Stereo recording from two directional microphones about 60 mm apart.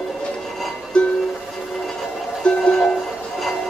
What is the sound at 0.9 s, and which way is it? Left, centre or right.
Music, centre.